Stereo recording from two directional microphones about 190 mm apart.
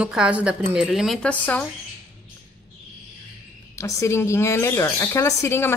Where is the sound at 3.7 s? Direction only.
15° left (ahead or behind).